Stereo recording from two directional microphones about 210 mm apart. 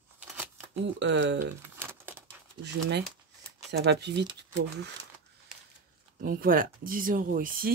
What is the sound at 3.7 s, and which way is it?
Speech, 55° right (ahead or behind).